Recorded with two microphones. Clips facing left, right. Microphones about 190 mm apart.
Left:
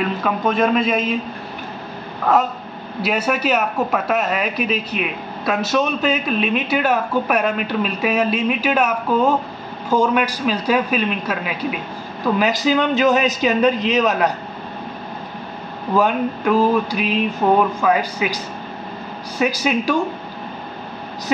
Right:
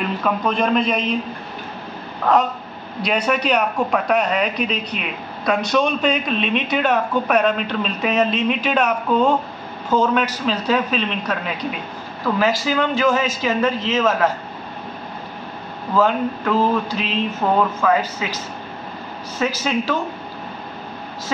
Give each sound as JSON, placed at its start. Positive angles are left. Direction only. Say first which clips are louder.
{"t": 0.2, "sound": "a man's voice", "louder": "left 1 dB", "side_deg": 5}
{"t": 3.0, "sound": "speech", "louder": "even", "side_deg": 5}
{"t": 15.9, "sound": "a woman's voice", "louder": "even", "side_deg": 15}